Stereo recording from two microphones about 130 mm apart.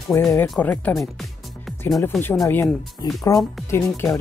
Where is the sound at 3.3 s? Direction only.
25° left (ahead or behind).